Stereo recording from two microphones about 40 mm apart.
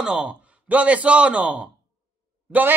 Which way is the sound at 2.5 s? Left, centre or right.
Right.